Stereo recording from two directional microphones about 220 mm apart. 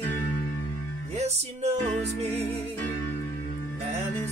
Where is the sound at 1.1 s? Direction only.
30° right (ahead or behind).